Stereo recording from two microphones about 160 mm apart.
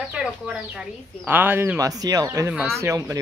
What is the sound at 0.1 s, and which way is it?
A woman's voice, 5° right (ahead or behind).